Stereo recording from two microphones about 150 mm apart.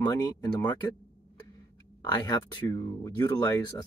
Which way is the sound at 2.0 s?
25° left (ahead or behind).